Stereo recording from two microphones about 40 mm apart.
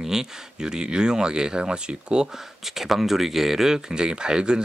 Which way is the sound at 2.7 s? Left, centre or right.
Centre.